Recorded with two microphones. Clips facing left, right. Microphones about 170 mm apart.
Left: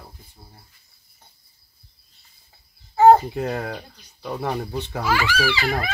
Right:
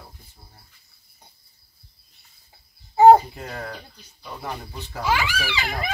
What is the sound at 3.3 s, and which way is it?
Chicken, 70° left (ahead or behind).